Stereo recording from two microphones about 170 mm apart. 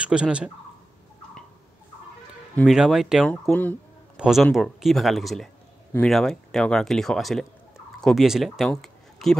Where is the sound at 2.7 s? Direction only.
Centre (ahead or behind).